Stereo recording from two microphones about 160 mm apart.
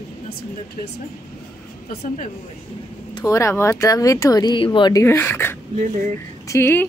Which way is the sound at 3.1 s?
20° left (ahead or behind).